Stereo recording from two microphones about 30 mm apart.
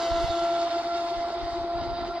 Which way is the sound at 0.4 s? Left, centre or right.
Right.